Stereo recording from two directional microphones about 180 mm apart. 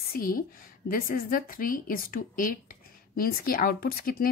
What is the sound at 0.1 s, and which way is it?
A woman's voice, 50° left (ahead or behind).